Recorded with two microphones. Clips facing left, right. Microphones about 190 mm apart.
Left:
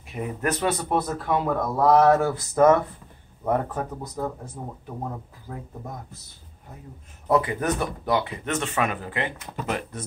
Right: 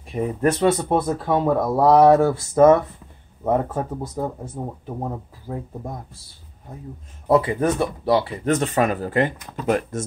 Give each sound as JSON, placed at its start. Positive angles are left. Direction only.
{"t": 0.1, "sound": "speech", "side_deg": -30}
{"t": 7.2, "sound": "speech", "side_deg": -30}